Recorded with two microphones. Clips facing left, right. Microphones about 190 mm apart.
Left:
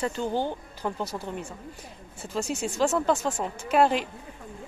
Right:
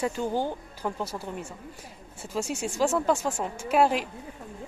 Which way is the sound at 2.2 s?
10° right (ahead or behind).